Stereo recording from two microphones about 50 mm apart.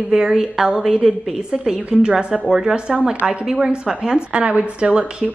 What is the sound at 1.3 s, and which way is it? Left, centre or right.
A woman's voice, centre.